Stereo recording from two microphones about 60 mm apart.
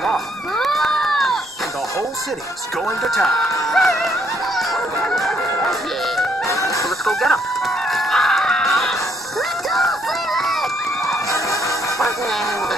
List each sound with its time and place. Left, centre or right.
0.0 s a sound: centre
3.0 s speech: centre
5.1 s music: centre
6.5 s chicken: left
7.1 s music: centre
9.7 s run: centre
11.2 s music: left